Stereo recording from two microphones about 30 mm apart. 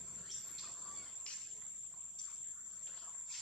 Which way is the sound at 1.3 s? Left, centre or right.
Left.